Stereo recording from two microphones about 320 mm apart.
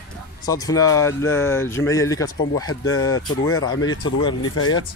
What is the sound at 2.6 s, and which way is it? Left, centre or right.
Speech, left.